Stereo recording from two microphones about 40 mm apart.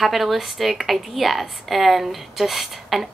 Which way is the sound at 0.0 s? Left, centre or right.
Centre.